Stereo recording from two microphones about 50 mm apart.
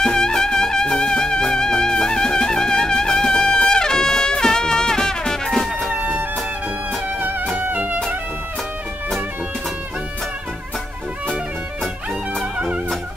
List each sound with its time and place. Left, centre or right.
0.0 s music: centre
5.9 s music: right
7.2 s music: right